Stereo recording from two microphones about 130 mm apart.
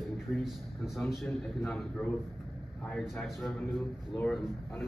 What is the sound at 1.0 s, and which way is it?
A man's voice, centre (ahead or behind).